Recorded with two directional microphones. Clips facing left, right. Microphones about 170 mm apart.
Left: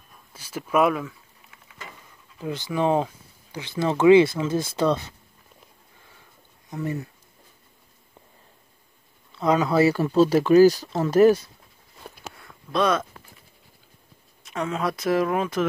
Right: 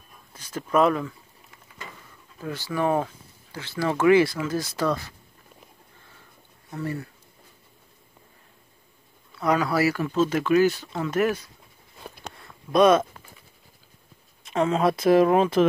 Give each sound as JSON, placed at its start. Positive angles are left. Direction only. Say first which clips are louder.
{"t": 0.3, "sound": "speech", "louder": "even", "side_deg": 10}
{"t": 2.4, "sound": "speech", "louder": "left 2 dB", "side_deg": 20}
{"t": 6.7, "sound": "speech", "louder": "left 2 dB", "side_deg": 20}
{"t": 9.3, "sound": "speech", "louder": "left 2 dB", "side_deg": 20}
{"t": 12.0, "sound": "a sound", "louder": "right 1 dB", "side_deg": 0}
{"t": 12.7, "sound": "speech", "louder": "right 5 dB", "side_deg": -20}
{"t": 14.4, "sound": "speech", "louder": "right 5 dB", "side_deg": -25}